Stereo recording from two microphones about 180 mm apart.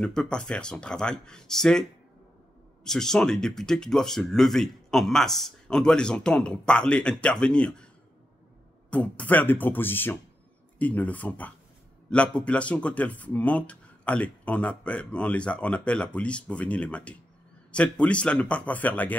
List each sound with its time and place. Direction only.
0.0 s speech: 5° left (ahead or behind)
8.9 s speech: 5° left (ahead or behind)